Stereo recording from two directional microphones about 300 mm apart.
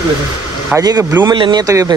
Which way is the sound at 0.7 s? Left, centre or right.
Centre.